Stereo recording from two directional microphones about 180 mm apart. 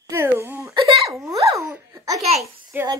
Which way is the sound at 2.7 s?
10° right (ahead or behind).